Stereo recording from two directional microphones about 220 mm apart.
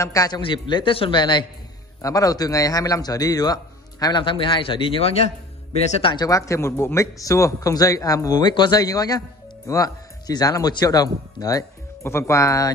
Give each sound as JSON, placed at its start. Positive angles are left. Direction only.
{"t": 0.0, "sound": "a man's voice", "side_deg": 15}